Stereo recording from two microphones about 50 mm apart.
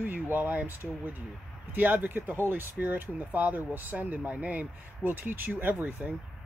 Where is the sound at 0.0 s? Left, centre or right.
Right.